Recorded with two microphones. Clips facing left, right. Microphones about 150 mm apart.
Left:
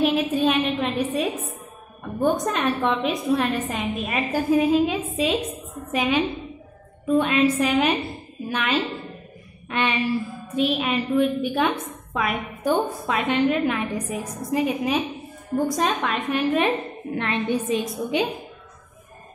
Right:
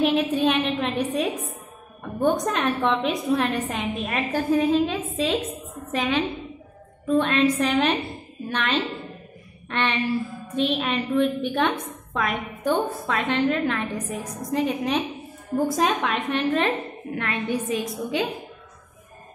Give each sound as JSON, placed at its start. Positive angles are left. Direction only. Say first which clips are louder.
{"t": 0.0, "sound": "a woman's voice", "louder": "even", "side_deg": 0}
{"t": 17.1, "sound": "a woman's voice", "louder": "left 3 dB", "side_deg": 25}